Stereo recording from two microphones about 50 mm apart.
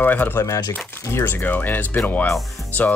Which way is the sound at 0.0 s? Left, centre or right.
Left.